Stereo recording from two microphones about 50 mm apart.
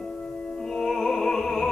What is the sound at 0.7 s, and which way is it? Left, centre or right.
Music, centre.